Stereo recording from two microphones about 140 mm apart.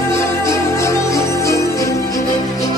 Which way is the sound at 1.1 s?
20° left (ahead or behind).